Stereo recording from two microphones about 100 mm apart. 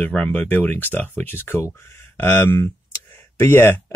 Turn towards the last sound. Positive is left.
turn(degrees=25)  # may be behind; listen again after turning